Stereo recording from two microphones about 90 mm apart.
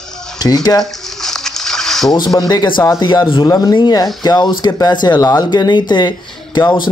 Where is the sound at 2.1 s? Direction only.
50° left (ahead or behind).